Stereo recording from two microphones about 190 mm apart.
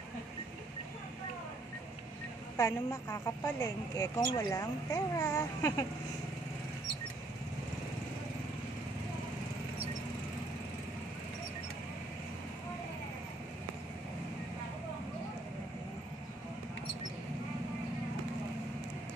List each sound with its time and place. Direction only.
2.5 s a woman's voice: 15° left (ahead or behind)